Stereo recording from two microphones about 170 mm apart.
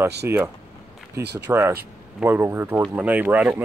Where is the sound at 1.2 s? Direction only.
80° right.